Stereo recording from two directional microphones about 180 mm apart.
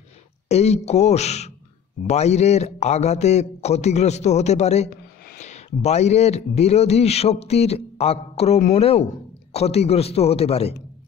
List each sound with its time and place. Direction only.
0.5 s speech: 35° left (ahead or behind)